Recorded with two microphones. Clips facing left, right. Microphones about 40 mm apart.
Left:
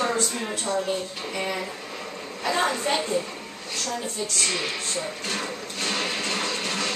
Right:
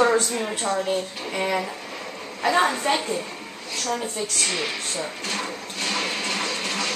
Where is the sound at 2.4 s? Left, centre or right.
Centre.